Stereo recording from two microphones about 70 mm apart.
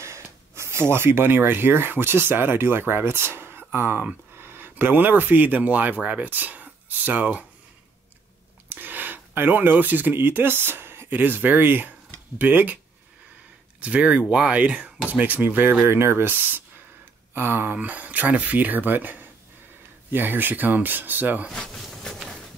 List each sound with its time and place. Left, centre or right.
0.0 s speech: right
8.6 s speech: right
13.7 s speech: centre
15.9 s speech: right
21.5 s a sound: centre